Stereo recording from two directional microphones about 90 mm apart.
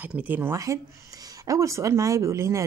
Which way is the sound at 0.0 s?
20° right (ahead or behind).